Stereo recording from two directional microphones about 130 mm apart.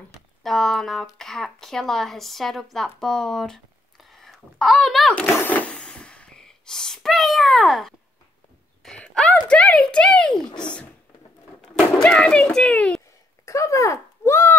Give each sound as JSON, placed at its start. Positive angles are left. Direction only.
{"t": 0.4, "sound": "speech", "side_deg": 0}
{"t": 5.3, "sound": "a sound", "side_deg": 15}
{"t": 8.8, "sound": "a child's voice", "side_deg": 5}
{"t": 13.5, "sound": "speech", "side_deg": 25}